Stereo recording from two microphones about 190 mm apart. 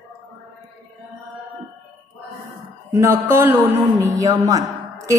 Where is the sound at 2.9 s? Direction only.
10° right (ahead or behind).